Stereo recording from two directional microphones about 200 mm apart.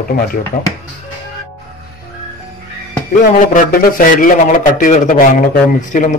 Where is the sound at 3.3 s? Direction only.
40° left (ahead or behind).